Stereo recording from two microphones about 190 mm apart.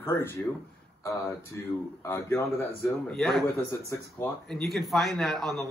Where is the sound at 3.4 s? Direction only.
10° left (ahead or behind).